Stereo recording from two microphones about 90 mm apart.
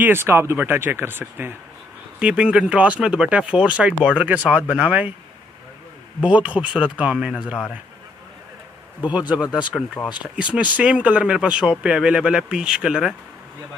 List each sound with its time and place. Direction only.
0.0 s speech: 25° right (ahead or behind)
2.1 s speech: 10° right (ahead or behind)
6.2 s speech: 15° right (ahead or behind)
9.3 s speech: 10° right (ahead or behind)
9.7 s speech: 5° left (ahead or behind)
10.2 s speech: 10° right (ahead or behind)